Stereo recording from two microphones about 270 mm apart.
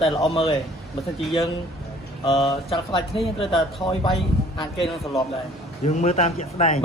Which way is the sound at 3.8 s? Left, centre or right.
Centre.